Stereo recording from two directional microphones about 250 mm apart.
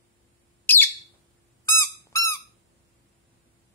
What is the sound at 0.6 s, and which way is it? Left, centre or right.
Bird, centre.